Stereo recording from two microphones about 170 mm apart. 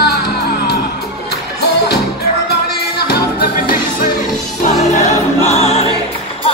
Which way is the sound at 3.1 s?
60° left (ahead or behind).